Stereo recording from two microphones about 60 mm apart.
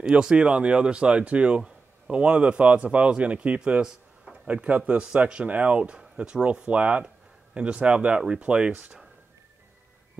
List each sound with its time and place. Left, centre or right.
0.0 s speech: centre